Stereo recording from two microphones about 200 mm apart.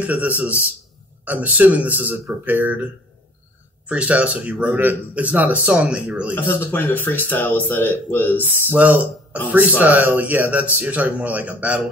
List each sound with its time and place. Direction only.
0.0 s speech: 10° right (ahead or behind)
3.9 s speech: 5° right (ahead or behind)
6.3 s speech: 10° left (ahead or behind)
8.6 s speech: 10° right (ahead or behind)